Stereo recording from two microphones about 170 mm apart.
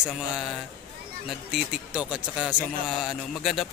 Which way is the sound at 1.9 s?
5° right (ahead or behind).